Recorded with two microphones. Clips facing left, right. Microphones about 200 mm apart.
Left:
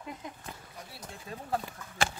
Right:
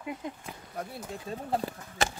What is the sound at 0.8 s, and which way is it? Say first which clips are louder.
Speech: right 10 dB; 55° right (ahead or behind).